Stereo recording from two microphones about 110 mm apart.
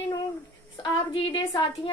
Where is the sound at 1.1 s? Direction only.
45° left (ahead or behind).